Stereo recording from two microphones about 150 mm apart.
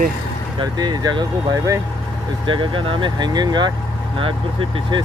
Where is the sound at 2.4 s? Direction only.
35° right (ahead or behind).